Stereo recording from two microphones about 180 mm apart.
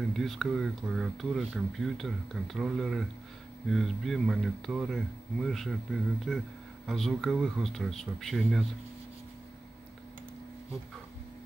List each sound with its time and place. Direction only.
0.1 s speech: centre (ahead or behind)